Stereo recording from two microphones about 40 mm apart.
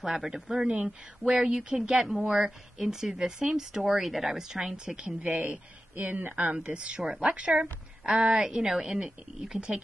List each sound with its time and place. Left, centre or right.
0.0 s a woman's voice: centre
0.8 s a sound: centre
1.8 s a woman's voice: centre
3.8 s a woman's voice: centre
5.2 s speech: right
7.0 s a woman's voice: centre
7.2 s a woman's voice: right